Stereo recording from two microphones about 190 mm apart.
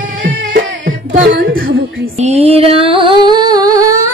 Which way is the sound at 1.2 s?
50° right (ahead or behind).